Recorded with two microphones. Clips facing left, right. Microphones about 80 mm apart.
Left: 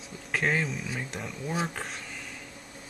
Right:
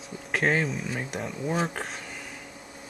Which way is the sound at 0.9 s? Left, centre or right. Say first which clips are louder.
Right 4 dB; centre.